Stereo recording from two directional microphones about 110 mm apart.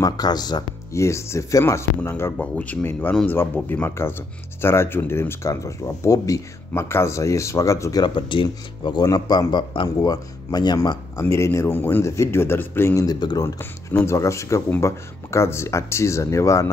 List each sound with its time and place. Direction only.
0.0 s speech: 40° left (ahead or behind)
0.9 s speech: 25° left (ahead or behind)
2.3 s speech: 10° left (ahead or behind); by 8.0 s 30° left (ahead or behind)
8.0 s speech: 45° left (ahead or behind); by 13.0 s 20° left (ahead or behind)
13.0 s speech: 40° left (ahead or behind)
13.6 s speech: 20° left (ahead or behind)